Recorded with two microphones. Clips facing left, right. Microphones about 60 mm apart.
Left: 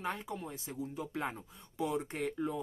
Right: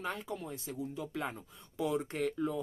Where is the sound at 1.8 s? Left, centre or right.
Centre.